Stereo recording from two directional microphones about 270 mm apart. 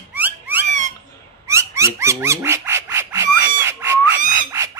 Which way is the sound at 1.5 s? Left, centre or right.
Centre.